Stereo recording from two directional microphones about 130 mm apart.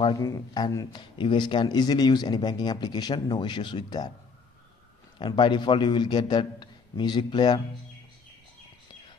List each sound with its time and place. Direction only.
0.0 s speech: 30° left (ahead or behind)
5.2 s speech: 35° left (ahead or behind)